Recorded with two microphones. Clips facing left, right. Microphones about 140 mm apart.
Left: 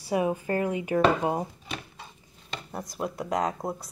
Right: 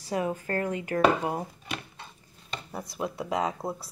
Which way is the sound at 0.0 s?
15° left (ahead or behind).